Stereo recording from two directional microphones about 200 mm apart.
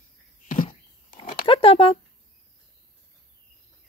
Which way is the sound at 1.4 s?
25° left (ahead or behind).